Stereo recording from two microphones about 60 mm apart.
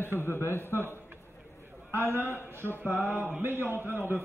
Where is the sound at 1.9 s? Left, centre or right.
Right.